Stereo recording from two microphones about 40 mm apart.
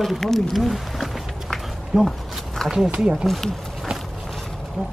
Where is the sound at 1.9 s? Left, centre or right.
Centre.